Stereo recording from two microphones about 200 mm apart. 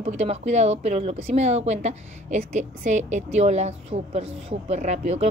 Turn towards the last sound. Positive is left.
turn(degrees=-35)  # may be behind; listen again after turning